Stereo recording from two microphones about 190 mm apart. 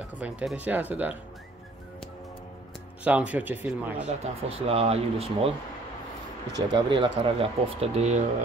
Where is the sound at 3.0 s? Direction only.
5° right (ahead or behind).